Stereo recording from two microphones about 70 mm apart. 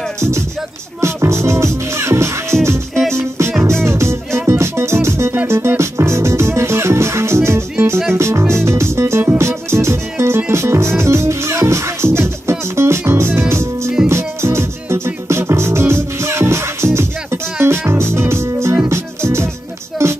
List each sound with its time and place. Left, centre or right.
1.0 s music: right
2.9 s music: centre
3.2 s music: right